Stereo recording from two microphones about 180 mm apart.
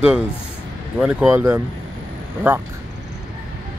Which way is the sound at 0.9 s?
10° right (ahead or behind).